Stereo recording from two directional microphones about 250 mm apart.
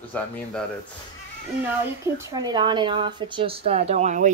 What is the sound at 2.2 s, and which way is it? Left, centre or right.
Speech, centre.